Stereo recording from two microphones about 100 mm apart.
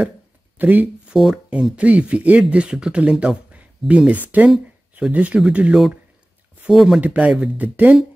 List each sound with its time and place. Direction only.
0.6 s speech: 15° right (ahead or behind)
1.1 s speech: 5° right (ahead or behind)